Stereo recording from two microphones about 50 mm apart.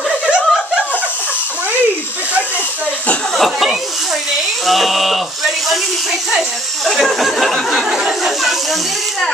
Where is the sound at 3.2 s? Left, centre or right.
Centre.